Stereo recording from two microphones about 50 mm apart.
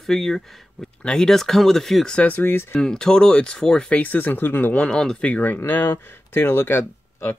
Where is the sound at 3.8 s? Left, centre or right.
Left.